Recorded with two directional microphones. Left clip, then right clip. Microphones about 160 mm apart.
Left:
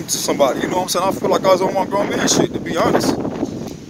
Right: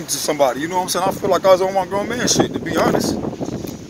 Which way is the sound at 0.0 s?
10° left (ahead or behind).